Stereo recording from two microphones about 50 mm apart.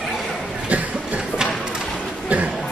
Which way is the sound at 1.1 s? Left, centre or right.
Centre.